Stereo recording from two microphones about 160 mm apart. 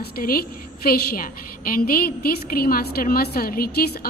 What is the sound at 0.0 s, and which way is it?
A woman's voice, 70° left (ahead or behind).